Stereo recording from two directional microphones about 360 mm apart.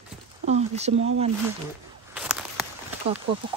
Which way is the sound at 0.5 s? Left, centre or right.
Centre.